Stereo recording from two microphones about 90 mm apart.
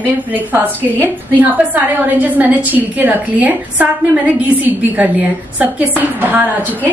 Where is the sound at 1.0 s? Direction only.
20° right (ahead or behind).